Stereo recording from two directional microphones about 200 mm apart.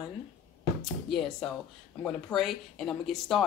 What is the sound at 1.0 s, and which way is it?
Speech, centre (ahead or behind).